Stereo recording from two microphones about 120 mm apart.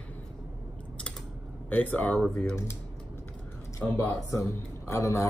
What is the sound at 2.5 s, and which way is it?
Speech, 20° left (ahead or behind).